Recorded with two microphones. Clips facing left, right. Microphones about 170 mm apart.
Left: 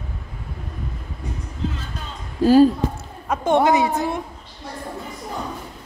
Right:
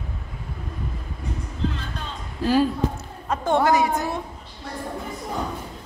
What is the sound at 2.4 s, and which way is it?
Speech, 40° left (ahead or behind).